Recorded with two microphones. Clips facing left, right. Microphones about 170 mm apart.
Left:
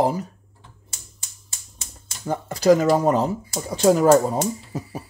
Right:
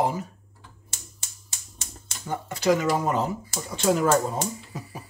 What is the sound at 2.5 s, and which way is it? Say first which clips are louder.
Speech: left 6 dB; 40° left (ahead or behind).